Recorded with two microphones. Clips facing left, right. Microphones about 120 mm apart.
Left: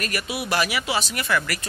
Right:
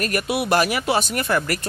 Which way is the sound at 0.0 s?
50° right (ahead or behind).